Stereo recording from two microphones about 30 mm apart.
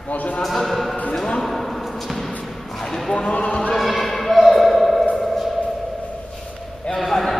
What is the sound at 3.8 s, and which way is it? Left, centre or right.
Basketball bounce, centre.